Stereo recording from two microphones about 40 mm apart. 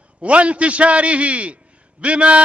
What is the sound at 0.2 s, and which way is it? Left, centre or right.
A man's voice, right.